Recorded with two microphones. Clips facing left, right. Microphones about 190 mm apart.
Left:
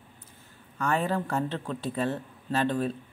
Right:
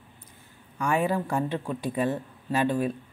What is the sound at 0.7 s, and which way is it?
Speech, 10° right (ahead or behind).